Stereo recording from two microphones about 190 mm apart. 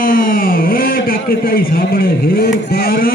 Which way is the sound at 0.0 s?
45° left (ahead or behind).